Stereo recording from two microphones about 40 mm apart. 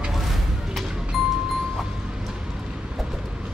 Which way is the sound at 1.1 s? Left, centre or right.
Centre.